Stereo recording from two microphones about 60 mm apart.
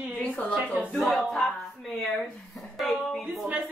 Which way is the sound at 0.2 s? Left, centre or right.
Centre.